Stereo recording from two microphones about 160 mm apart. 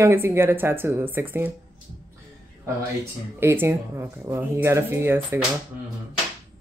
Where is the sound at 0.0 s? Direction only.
15° right (ahead or behind).